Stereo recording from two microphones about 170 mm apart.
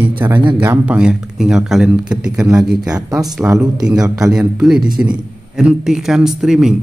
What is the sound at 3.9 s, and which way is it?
Speech, 20° right (ahead or behind).